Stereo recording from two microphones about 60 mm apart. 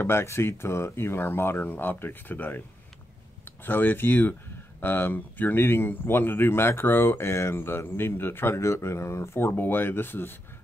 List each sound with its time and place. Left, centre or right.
0.0 s speech: left
3.6 s speech: left